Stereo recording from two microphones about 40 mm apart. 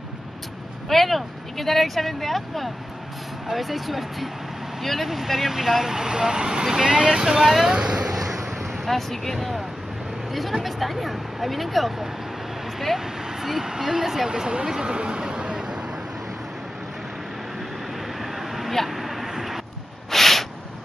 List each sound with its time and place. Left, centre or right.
0.8 s speech: centre; by 7.4 s right
7.4 s speech: centre
7.7 s speech: centre
8.1 s a sound: centre
8.8 s speech: centre
14.3 s speech: right
14.7 s a sound: right
18.0 s vehicle: centre
20.1 s a sound: centre